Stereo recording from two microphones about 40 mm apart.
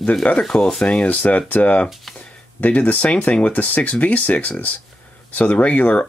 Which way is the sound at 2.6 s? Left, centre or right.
Left.